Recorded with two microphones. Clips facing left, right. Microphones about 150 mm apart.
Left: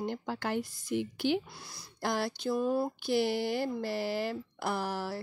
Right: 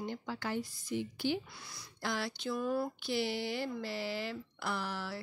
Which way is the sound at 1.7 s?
45° left (ahead or behind).